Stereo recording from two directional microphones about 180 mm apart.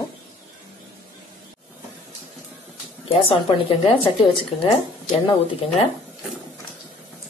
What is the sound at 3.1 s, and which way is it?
A woman's voice, 30° left (ahead or behind).